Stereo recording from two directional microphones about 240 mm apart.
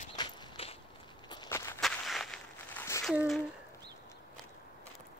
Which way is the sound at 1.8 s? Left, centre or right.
Centre.